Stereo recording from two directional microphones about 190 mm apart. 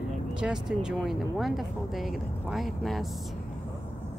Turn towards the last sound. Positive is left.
turn(degrees=0)  # may be behind; listen again after turning